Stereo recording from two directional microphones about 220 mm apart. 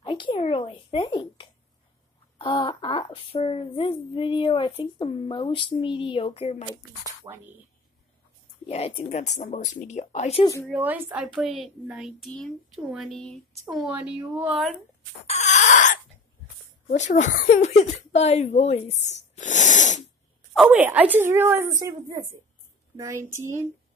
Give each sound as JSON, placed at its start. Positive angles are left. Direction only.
{"t": 0.0, "sound": "a sound", "side_deg": 20}
{"t": 2.3, "sound": "speech", "side_deg": 20}
{"t": 7.3, "sound": "a woman's voice", "side_deg": -15}
{"t": 8.6, "sound": "speech", "side_deg": 25}
{"t": 10.7, "sound": "a woman's voice", "side_deg": -5}
{"t": 15.2, "sound": "a sound", "side_deg": 30}
{"t": 16.8, "sound": "speech", "side_deg": 35}
{"t": 20.5, "sound": "a woman's voice", "side_deg": -5}